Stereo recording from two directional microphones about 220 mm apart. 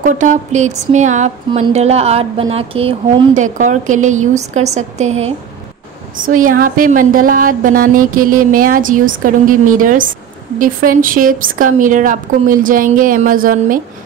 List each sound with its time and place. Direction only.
0.0 s a woman's voice: 35° right (ahead or behind)